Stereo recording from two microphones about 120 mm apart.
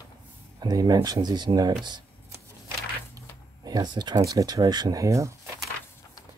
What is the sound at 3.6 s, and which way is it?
Speech, 35° right (ahead or behind).